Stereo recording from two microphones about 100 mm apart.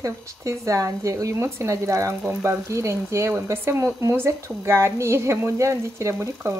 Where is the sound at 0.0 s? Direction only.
30° right (ahead or behind).